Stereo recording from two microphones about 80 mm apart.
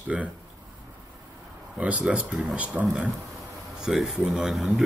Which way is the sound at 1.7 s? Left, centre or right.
Centre.